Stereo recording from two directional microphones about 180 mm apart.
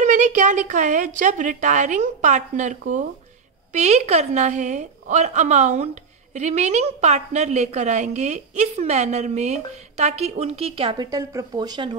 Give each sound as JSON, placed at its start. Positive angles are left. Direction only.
{"t": 0.0, "sound": "a woman's voice", "side_deg": -45}